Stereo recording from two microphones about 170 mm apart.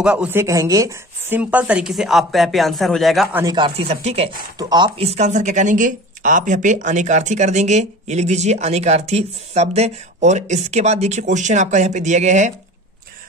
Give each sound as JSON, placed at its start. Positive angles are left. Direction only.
{"t": 0.0, "sound": "speech", "side_deg": -5}
{"t": 3.5, "sound": "speech", "side_deg": -30}
{"t": 4.6, "sound": "speech", "side_deg": -25}